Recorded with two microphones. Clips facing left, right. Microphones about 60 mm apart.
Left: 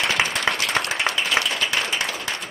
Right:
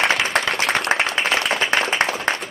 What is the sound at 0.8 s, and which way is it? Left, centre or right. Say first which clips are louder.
Applause: right 4 dB; right.